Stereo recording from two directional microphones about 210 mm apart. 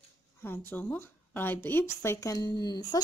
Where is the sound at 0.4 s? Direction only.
10° left (ahead or behind).